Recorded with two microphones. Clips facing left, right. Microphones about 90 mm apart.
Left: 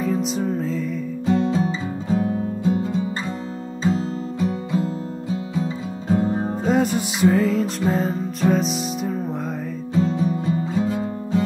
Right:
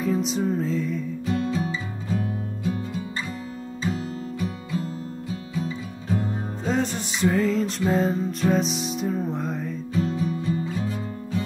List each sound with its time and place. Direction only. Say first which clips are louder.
0.0 s music: left 1 dB; centre (ahead or behind)
1.2 s music: left 7 dB; 25° left (ahead or behind)
6.7 s music: left 5 dB; 5° left (ahead or behind)
9.9 s music: left 5 dB; 30° left (ahead or behind)